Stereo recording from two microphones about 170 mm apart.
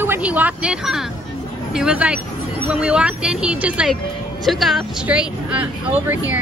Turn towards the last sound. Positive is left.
turn(degrees=-10)  # may be behind; listen again after turning